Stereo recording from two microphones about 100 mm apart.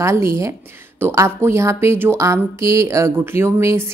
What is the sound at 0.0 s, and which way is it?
A woman's voice, 30° right (ahead or behind).